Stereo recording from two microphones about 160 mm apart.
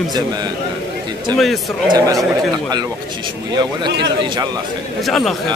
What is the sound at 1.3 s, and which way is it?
Speech, centre (ahead or behind).